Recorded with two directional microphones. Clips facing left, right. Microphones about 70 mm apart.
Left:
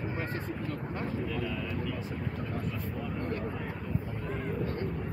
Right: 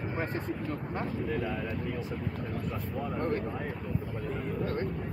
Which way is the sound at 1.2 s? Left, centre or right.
Right.